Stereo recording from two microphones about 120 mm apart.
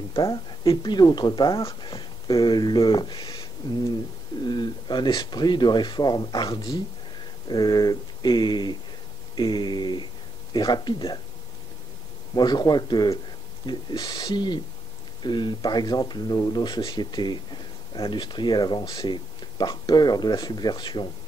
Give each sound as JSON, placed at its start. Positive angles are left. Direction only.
{"t": 0.7, "sound": "speech", "side_deg": 35}
{"t": 4.5, "sound": "speech", "side_deg": 40}
{"t": 12.4, "sound": "speech", "side_deg": 35}